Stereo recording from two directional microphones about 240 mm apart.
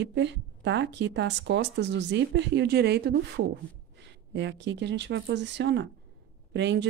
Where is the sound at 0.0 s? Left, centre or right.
Right.